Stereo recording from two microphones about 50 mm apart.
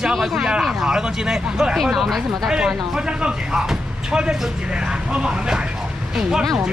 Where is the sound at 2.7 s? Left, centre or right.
Centre.